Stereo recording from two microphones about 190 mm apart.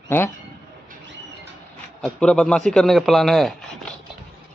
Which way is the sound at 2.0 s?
5° left (ahead or behind).